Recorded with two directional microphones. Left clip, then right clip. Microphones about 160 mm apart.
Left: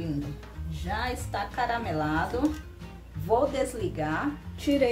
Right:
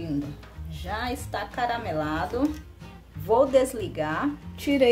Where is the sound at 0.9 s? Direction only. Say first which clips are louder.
Right 1 dB; 70° right (ahead or behind).